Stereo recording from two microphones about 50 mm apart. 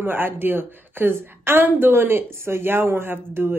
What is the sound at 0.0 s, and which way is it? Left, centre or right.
A woman's voice, right.